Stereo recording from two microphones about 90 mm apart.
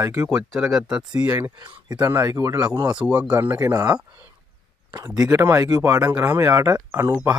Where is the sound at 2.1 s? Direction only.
40° right (ahead or behind).